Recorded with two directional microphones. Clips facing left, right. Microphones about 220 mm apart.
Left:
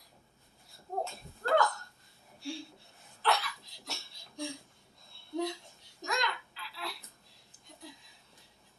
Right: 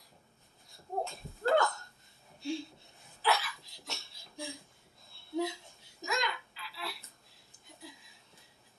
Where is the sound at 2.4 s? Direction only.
20° right (ahead or behind).